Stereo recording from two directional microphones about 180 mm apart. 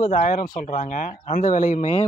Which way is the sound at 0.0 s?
45° left (ahead or behind).